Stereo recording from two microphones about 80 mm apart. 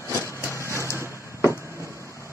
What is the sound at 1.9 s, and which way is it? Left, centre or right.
Vehicle, right.